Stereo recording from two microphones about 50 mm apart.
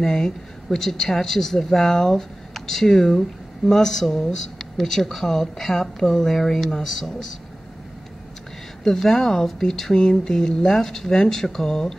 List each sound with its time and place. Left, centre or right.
0.0 s speech: centre
8.8 s speech: centre